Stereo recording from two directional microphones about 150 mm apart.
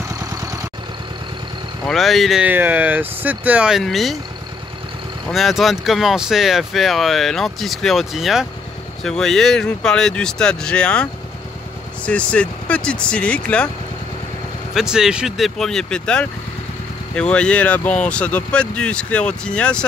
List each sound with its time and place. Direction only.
0.1 s vehicle: 25° right (ahead or behind)
1.9 s speech: centre (ahead or behind)
5.3 s speech: centre (ahead or behind)
12.1 s speech: 10° left (ahead or behind)
14.7 s speech: 5° right (ahead or behind)